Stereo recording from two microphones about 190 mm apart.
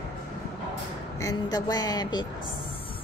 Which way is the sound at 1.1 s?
20° left (ahead or behind).